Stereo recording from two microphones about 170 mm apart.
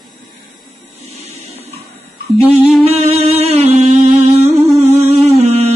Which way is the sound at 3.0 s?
40° right (ahead or behind).